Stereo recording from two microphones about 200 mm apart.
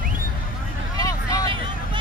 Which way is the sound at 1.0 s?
15° left (ahead or behind).